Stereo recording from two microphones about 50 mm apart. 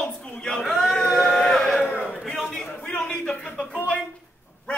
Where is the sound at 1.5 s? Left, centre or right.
Centre.